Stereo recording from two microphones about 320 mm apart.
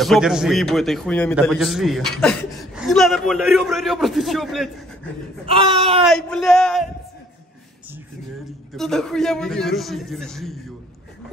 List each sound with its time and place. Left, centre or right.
0.0 s a man's voice: centre
5.5 s speech: centre
6.0 s a man's voice: centre
8.7 s a man's voice: centre